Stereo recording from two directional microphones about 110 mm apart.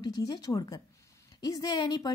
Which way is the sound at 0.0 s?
35° left (ahead or behind).